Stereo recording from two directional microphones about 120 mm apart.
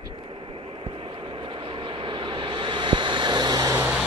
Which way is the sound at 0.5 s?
50° right (ahead or behind).